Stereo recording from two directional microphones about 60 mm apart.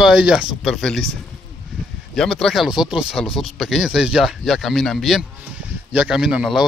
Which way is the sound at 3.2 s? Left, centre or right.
Centre.